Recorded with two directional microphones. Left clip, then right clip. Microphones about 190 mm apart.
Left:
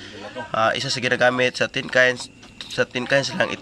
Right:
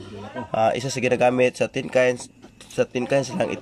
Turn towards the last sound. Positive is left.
turn(degrees=-10)  # may be behind; listen again after turning